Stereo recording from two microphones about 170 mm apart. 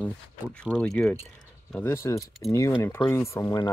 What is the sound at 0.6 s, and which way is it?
Speech, 5° left (ahead or behind).